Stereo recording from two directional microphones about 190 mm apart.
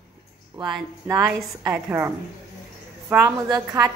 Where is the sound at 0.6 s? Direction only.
20° right (ahead or behind).